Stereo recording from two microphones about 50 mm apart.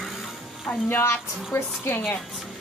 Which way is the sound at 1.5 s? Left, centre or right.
Left.